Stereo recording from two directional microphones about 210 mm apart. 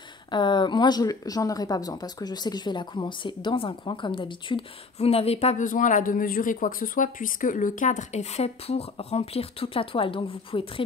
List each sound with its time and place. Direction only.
0.3 s speech: 20° left (ahead or behind)